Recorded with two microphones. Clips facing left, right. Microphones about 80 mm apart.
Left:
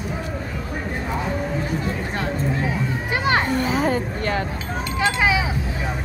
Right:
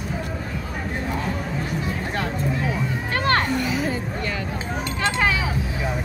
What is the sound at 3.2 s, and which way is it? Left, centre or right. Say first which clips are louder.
Children playing: even; centre.